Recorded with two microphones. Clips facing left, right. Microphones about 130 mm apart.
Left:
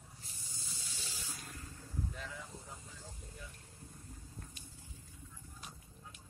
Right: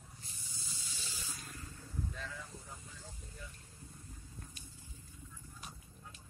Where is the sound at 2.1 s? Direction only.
20° left (ahead or behind).